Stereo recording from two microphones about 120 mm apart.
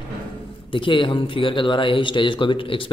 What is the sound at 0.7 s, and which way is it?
Speech, 45° left (ahead or behind).